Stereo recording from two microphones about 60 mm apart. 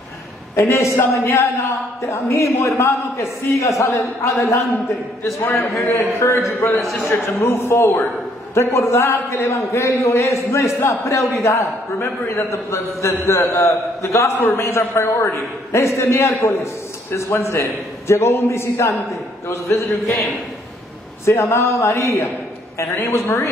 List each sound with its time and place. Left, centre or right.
0.6 s a man's voice: left
0.9 s a man's voice: left
14.3 s a man's voice: left
21.3 s a man's voice: left